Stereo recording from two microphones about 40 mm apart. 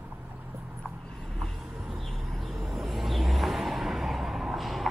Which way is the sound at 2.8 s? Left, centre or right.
Centre.